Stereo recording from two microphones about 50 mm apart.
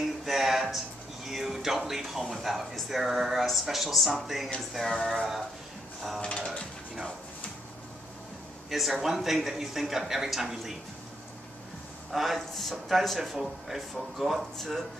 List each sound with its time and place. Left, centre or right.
0.2 s a sound: centre
1.9 s speech: centre
6.3 s speech: centre
8.6 s speech: centre
12.1 s speech: centre